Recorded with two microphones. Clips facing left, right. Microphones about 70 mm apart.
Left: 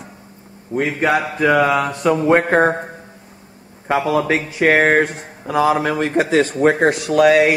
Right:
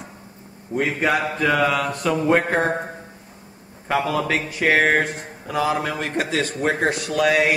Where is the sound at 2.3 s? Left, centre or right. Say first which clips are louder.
Left 5 dB; centre.